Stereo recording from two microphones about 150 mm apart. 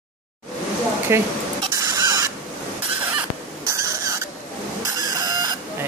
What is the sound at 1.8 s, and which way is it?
Rodents, 25° right (ahead or behind).